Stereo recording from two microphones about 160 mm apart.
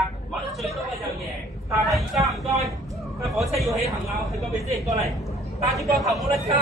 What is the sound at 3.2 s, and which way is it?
A woman's voice, centre (ahead or behind).